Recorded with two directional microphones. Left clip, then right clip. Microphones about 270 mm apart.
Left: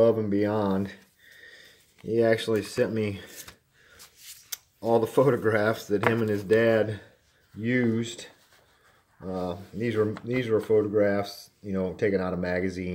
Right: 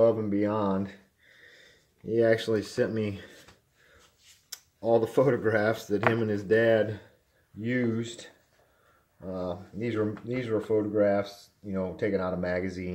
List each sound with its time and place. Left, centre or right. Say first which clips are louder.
0.0 s speech: left 2 dB; centre
4.5 s speech: even; centre
7.6 s speech: left 3 dB; left
9.3 s speech: left 2 dB; left